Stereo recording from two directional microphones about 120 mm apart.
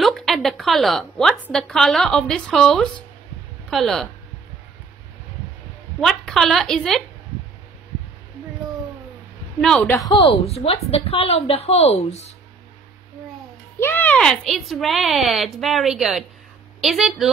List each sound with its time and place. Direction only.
0.0 s a woman's voice: centre (ahead or behind)
5.9 s speech: centre (ahead or behind)
9.6 s speech: 5° left (ahead or behind)
10.0 s a woman's voice: 40° left (ahead or behind)
10.4 s speech: 55° left (ahead or behind)
13.7 s speech: 15° left (ahead or behind); by 17.3 s 5° right (ahead or behind)